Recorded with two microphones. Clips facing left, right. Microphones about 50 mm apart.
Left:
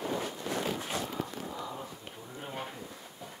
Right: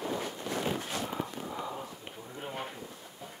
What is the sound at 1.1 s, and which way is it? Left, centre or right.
Walk, right.